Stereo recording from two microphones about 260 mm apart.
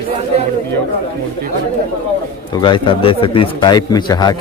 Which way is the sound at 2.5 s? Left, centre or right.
Centre.